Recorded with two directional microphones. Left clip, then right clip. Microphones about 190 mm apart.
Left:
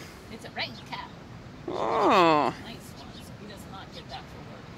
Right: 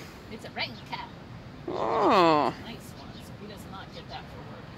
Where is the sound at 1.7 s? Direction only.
Centre (ahead or behind).